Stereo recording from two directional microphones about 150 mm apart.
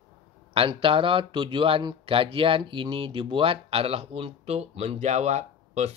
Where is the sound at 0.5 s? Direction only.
35° right (ahead or behind).